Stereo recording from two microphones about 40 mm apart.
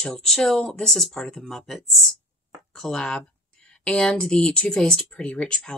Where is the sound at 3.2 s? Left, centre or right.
Left.